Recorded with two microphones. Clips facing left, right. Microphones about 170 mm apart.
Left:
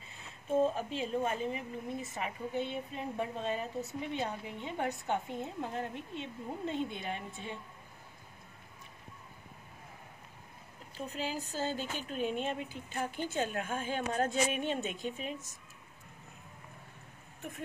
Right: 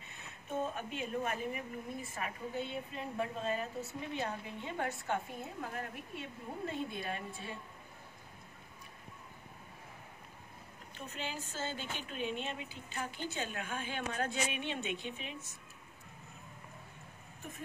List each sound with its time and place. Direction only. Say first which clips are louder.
0.5 s a woman's voice: left 8 dB; 30° left (ahead or behind)
11.0 s a woman's voice: left 5 dB; 35° left (ahead or behind)